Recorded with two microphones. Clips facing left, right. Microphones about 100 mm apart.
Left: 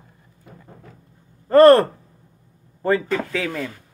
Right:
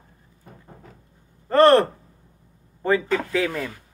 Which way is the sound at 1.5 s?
5° left (ahead or behind).